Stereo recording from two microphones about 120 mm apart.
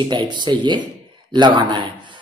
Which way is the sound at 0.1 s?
40° right (ahead or behind).